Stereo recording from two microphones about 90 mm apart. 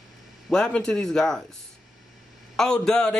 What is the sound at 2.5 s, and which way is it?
Speech, 5° left (ahead or behind).